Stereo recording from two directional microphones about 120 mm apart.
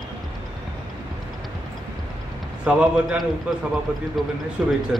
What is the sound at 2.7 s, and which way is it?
A man's voice, 5° right (ahead or behind).